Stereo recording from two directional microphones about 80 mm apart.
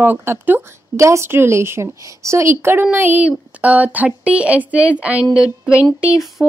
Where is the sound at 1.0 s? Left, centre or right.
Right; by 6.5 s centre.